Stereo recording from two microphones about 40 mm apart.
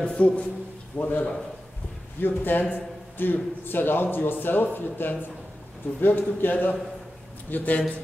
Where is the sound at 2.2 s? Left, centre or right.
Left.